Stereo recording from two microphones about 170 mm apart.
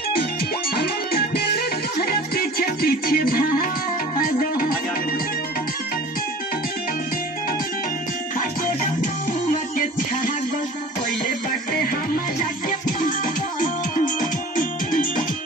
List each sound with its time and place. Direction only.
0.7 s music: 70° left (ahead or behind)
12.6 s music: 55° left (ahead or behind)